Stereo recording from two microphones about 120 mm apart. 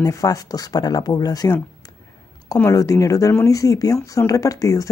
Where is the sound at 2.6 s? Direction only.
30° left (ahead or behind).